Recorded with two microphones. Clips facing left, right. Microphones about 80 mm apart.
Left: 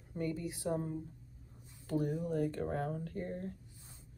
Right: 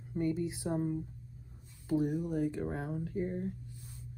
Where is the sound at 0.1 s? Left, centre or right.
Right.